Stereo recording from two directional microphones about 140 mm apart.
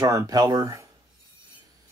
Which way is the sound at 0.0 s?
25° right (ahead or behind).